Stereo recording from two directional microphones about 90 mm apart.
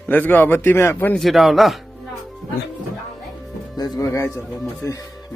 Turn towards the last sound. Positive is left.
turn(degrees=35)  # may be behind; listen again after turning